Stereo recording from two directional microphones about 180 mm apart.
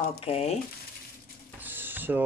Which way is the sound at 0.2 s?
35° left (ahead or behind).